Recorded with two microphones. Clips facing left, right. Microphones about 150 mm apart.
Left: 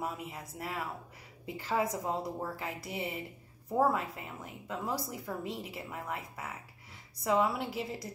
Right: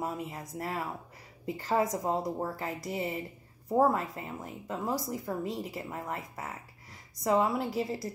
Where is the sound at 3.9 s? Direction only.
40° right (ahead or behind).